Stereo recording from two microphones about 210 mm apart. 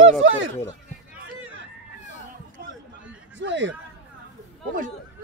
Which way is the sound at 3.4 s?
60° right (ahead or behind).